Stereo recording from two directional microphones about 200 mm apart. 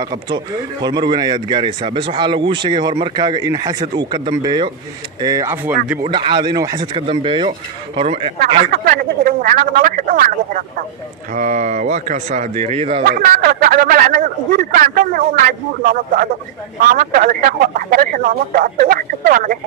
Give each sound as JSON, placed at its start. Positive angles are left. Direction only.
{"t": 0.3, "sound": "speech", "side_deg": -20}
{"t": 6.0, "sound": "speech", "side_deg": -25}
{"t": 8.4, "sound": "speech", "side_deg": -45}
{"t": 13.0, "sound": "speech", "side_deg": -50}
{"t": 16.9, "sound": "speech", "side_deg": -45}